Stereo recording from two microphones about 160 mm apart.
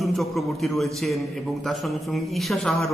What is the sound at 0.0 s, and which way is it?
A man's voice, centre (ahead or behind).